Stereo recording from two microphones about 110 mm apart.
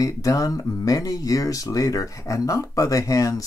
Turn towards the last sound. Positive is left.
turn(degrees=30)  # may be behind; listen again after turning